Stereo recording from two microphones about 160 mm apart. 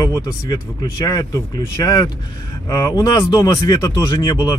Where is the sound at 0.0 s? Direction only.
25° left (ahead or behind).